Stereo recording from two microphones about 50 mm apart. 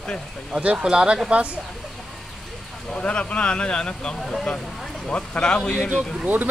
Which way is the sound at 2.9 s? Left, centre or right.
Left.